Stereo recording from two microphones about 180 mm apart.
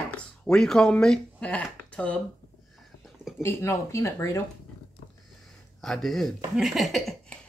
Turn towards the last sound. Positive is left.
turn(degrees=0)  # may be behind; listen again after turning